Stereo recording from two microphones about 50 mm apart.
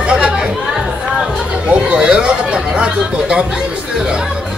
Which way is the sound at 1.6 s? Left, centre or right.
Centre.